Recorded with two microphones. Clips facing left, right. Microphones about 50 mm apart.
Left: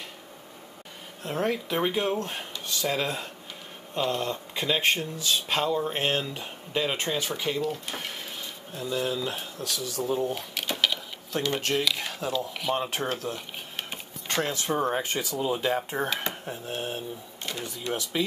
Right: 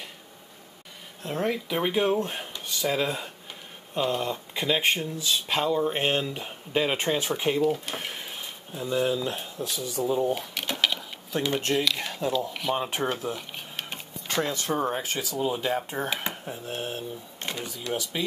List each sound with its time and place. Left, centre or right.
1.2 s speech: centre; by 9.1 s right
9.1 s speech: centre
10.2 s a sound: centre
11.7 s speech: centre
13.7 s a sound: centre
14.7 s speech: centre
17.4 s speech: right